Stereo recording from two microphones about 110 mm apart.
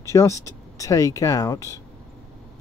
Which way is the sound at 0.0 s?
30° left (ahead or behind).